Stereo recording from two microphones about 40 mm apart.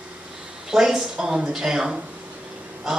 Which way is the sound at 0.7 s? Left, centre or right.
Centre.